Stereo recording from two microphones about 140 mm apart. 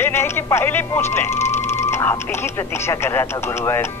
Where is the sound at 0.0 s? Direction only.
15° left (ahead or behind).